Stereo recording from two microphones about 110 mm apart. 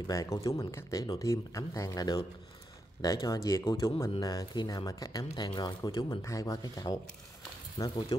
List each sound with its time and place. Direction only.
0.0 s speech: 30° left (ahead or behind)
5.5 s speech: 45° left (ahead or behind)
6.2 s speech: 30° left (ahead or behind)